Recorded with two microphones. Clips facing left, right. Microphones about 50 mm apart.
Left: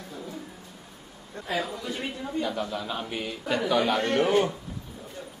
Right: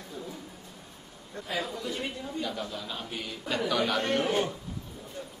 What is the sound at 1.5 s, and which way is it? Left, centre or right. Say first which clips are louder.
A man's voice: left 3 dB; centre.